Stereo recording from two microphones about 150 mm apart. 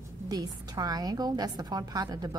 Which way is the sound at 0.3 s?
25° right (ahead or behind).